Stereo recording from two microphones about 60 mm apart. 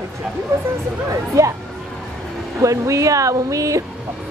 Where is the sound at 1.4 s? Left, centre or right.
Right.